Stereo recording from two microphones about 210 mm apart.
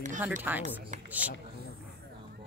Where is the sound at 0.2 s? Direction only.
10° right (ahead or behind).